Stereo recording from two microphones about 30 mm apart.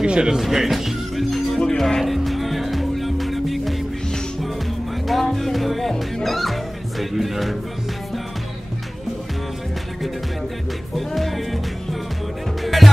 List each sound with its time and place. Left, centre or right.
0.0 s speech: right
0.5 s music: centre
5.0 s music: centre
11.0 s music: centre
12.6 s music: centre